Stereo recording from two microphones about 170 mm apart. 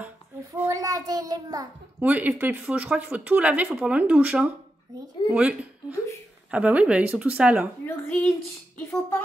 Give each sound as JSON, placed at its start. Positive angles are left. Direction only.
{"t": 0.5, "sound": "child singing", "side_deg": -20}
{"t": 2.0, "sound": "a woman's voice", "side_deg": -10}
{"t": 7.8, "sound": "speech", "side_deg": 10}